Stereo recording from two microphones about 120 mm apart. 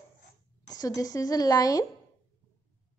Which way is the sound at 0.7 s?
30° left (ahead or behind).